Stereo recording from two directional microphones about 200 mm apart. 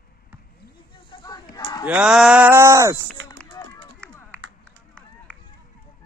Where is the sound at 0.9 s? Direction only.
20° left (ahead or behind).